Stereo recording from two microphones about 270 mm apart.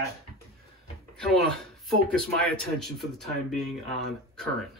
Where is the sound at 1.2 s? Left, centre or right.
Centre.